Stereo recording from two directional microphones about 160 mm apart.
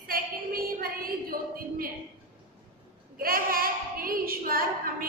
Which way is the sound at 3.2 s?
65° right (ahead or behind).